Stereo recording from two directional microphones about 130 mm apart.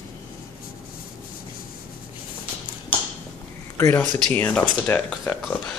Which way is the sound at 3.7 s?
20° left (ahead or behind).